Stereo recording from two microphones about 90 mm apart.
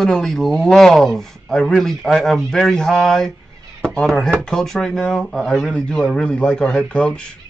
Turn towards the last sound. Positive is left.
turn(degrees=10)  # may be behind; listen again after turning